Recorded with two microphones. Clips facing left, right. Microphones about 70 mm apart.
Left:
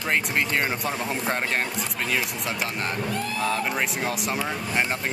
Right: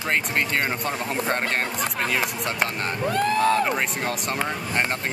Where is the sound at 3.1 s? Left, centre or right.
Right.